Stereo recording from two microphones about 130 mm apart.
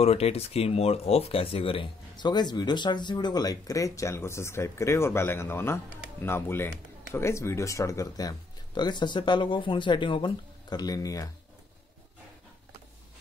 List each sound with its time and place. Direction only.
0.0 s speech: 50° left (ahead or behind); by 11.2 s 25° left (ahead or behind)